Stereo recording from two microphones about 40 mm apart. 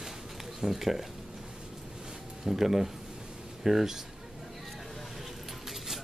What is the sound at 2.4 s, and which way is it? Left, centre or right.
Speech, centre.